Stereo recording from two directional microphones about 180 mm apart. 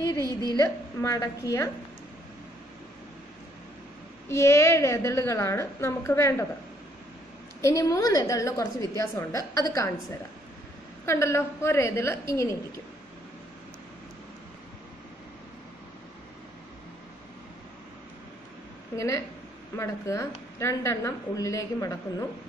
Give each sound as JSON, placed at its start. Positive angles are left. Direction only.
{"t": 0.2, "sound": "a woman's voice", "side_deg": -20}
{"t": 0.6, "sound": "a woman's voice", "side_deg": 20}
{"t": 4.3, "sound": "a woman's voice", "side_deg": 15}
{"t": 7.6, "sound": "a woman's voice", "side_deg": 15}
{"t": 11.1, "sound": "a woman's voice", "side_deg": 15}
{"t": 18.9, "sound": "a woman's voice", "side_deg": 15}